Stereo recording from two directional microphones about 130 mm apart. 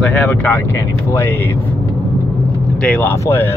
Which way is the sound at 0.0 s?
10° left (ahead or behind).